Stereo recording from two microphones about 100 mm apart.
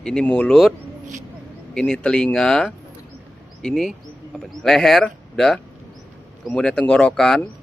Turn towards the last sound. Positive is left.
turn(degrees=5)  # may be behind; listen again after turning